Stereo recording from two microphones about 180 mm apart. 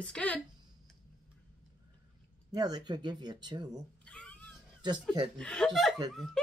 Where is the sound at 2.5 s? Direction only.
25° right (ahead or behind).